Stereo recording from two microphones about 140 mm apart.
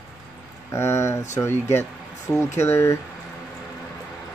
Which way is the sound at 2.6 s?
20° left (ahead or behind).